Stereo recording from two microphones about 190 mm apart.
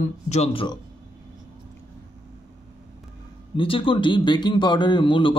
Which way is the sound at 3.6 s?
30° left (ahead or behind).